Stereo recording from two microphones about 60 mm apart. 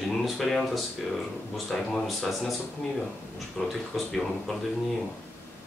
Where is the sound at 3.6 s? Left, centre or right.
Centre.